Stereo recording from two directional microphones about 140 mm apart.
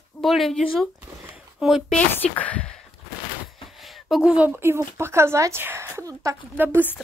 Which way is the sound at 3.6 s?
Centre (ahead or behind).